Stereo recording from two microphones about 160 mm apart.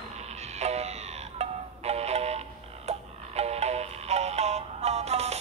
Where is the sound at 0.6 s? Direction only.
45° right (ahead or behind).